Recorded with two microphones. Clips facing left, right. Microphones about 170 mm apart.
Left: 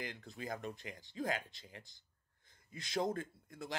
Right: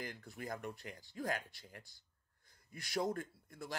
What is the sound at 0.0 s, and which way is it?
Speech, 20° left (ahead or behind).